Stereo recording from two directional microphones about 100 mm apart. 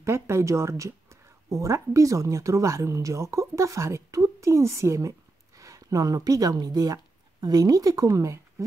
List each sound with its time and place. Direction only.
0.0 s speech: 25° right (ahead or behind)